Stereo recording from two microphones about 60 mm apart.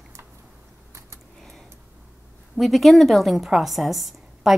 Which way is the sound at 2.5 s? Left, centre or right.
Centre.